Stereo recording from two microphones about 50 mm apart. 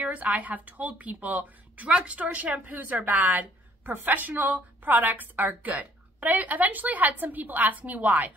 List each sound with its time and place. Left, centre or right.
0.0 s a woman's voice: right
2.0 s a woman's voice: right